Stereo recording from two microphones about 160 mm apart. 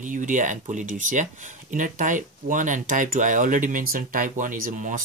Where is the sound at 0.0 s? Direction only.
50° right (ahead or behind).